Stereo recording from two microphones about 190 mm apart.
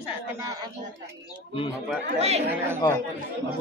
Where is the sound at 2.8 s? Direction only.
15° left (ahead or behind).